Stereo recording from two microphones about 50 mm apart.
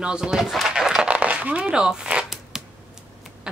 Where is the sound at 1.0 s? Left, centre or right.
Right.